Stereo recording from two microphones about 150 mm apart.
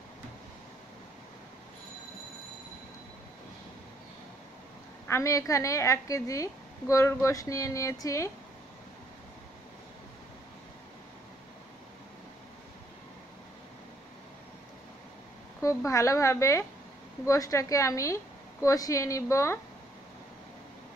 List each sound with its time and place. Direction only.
5.0 s a woman's voice: 20° left (ahead or behind)
15.6 s a woman's voice: 20° left (ahead or behind)